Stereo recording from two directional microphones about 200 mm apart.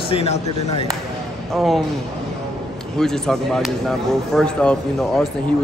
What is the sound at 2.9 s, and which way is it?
Speech, centre (ahead or behind).